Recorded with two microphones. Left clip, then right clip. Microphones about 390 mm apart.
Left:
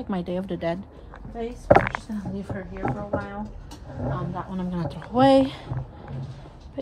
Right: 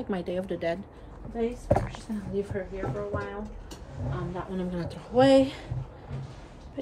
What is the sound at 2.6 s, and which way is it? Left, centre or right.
Speech, centre.